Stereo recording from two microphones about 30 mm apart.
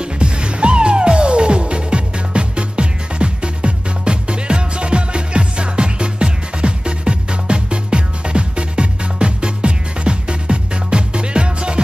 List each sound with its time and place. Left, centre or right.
0.0 s music: right